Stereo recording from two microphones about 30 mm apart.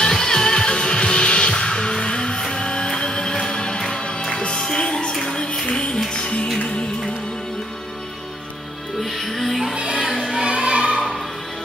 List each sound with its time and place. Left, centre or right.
0.0 s music: left
9.0 s music: centre
9.9 s music: right